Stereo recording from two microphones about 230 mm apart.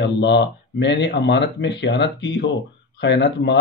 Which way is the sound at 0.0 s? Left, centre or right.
Left.